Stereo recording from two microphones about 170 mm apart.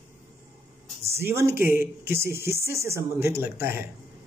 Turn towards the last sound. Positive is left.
turn(degrees=-15)  # may be behind; listen again after turning